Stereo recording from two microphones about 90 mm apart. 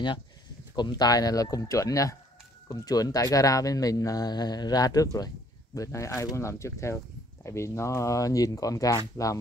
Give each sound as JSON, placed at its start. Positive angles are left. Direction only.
{"t": 0.7, "sound": "speech", "side_deg": 50}